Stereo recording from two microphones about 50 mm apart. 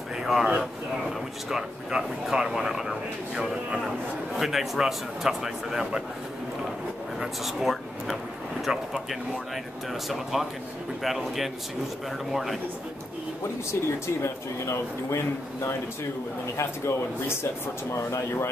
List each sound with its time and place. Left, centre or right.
0.2 s speech: centre
7.2 s speech: centre
11.0 s speech: centre
13.7 s speech: left
16.5 s speech: left